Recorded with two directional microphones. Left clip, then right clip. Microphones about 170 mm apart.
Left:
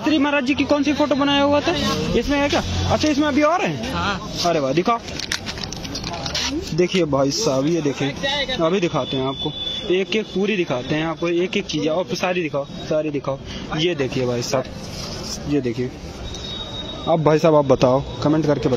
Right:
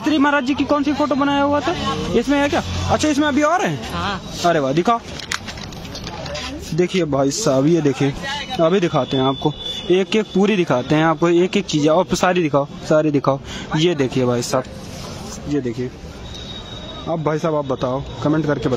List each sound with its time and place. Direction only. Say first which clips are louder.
0.0 s speech: right 2 dB; 35° right (ahead or behind); by 1.6 s 20° right (ahead or behind)
2.1 s speech: right 3 dB; 40° right (ahead or behind)
3.9 s speech: left 1 dB; 20° right (ahead or behind)
4.5 s speech: right 3 dB; 45° right (ahead or behind)
6.8 s speech: right 1 dB; 40° right (ahead or behind)
17.1 s speech: left 5 dB; centre (ahead or behind)
18.2 s speech: right 3 dB; 10° right (ahead or behind)